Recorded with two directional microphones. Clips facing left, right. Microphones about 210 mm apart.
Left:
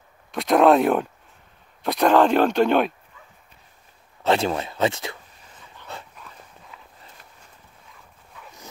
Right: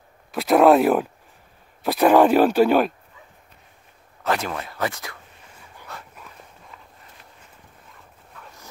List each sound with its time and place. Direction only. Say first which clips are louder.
0.3 s speech: right 1 dB; 5° right (ahead or behind)
4.2 s speech: left 4 dB; 25° left (ahead or behind)